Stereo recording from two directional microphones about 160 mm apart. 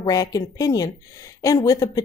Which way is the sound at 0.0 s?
20° left (ahead or behind).